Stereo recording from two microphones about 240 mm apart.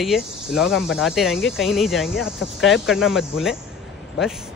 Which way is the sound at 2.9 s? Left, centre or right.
Centre.